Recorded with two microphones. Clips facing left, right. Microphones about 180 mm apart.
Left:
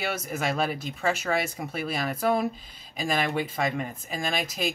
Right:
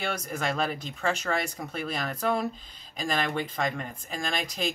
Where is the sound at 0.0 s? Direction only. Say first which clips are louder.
Left 1 dB; 5° left (ahead or behind).